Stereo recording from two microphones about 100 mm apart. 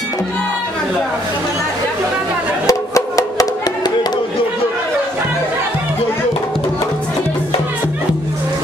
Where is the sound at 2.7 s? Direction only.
35° left (ahead or behind).